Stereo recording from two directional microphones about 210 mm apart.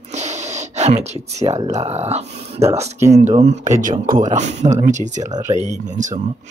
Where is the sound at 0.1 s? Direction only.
35° right (ahead or behind).